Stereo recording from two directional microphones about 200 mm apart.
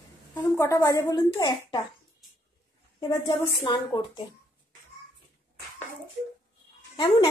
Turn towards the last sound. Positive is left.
turn(degrees=25)  # may be behind; listen again after turning